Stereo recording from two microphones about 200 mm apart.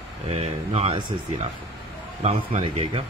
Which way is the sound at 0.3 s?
30° right (ahead or behind).